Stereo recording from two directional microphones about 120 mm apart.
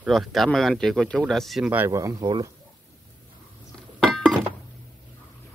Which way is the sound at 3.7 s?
Centre (ahead or behind).